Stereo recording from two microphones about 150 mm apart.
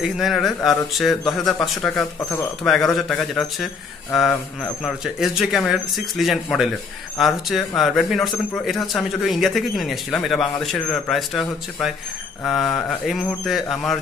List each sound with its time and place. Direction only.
0.0 s speech: centre (ahead or behind)